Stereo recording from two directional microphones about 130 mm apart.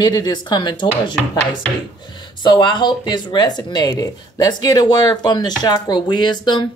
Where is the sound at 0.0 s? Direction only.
30° left (ahead or behind).